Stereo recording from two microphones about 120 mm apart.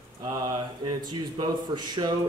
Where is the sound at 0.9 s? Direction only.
35° right (ahead or behind).